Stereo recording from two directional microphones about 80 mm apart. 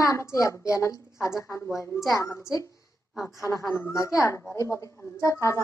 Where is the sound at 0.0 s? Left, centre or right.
Left.